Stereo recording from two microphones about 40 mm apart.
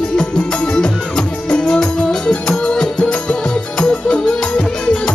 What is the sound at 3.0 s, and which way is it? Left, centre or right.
Music, left.